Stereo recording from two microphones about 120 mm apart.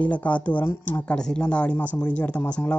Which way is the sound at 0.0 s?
10° left (ahead or behind).